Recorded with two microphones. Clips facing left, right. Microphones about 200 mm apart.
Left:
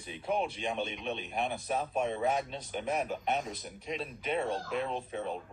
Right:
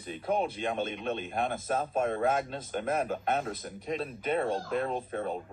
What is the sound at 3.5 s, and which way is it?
Speech, 50° right (ahead or behind).